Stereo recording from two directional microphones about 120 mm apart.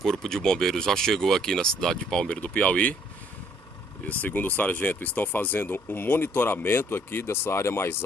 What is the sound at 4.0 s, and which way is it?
Speech, 15° left (ahead or behind).